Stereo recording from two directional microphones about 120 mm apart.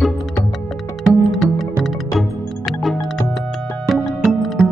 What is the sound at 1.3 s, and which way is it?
Music, centre (ahead or behind).